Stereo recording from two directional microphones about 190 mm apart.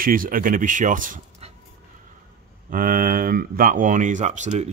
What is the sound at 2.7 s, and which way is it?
Speech, 50° right (ahead or behind).